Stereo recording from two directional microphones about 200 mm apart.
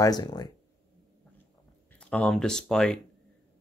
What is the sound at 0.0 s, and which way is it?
Speech, 20° left (ahead or behind).